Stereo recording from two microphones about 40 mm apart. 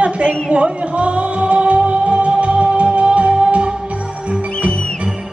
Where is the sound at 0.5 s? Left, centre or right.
Right.